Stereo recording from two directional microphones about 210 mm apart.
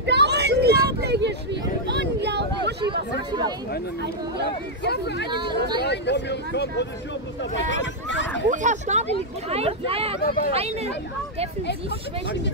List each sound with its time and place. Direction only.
0.0 s a sound: 55° right (ahead or behind)
2.8 s speech: 20° right (ahead or behind)
4.8 s speech: 50° left (ahead or behind)
8.5 s speech: 35° right (ahead or behind)
10.2 s speech: 45° left (ahead or behind)
10.5 s speech: 30° right (ahead or behind)